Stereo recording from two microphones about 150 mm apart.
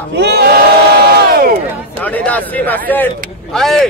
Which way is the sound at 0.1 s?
90° right.